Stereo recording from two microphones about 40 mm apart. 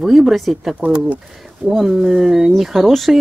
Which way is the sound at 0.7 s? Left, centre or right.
Right.